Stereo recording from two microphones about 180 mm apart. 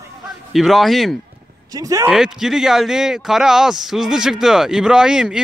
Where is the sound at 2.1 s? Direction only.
Centre (ahead or behind).